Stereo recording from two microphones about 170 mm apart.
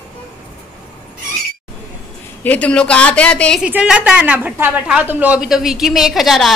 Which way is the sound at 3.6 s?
5° right (ahead or behind).